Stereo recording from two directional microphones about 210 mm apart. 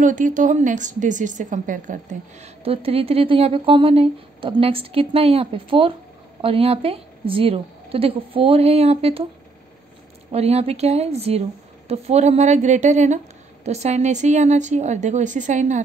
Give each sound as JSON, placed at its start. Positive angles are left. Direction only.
{"t": 0.0, "sound": "a woman's voice", "side_deg": -40}
{"t": 2.4, "sound": "speech", "side_deg": -25}
{"t": 10.3, "sound": "a woman's voice", "side_deg": -30}